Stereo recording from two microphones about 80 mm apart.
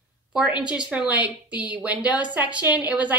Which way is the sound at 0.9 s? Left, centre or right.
Centre.